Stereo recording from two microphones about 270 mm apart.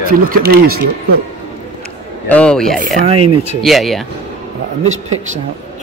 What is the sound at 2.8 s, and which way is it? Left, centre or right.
Speech, right.